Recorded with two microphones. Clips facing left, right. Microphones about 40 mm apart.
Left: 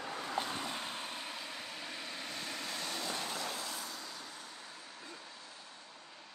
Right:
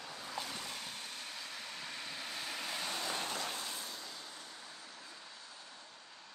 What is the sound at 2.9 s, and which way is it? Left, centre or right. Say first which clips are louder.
Vehicle: even; right.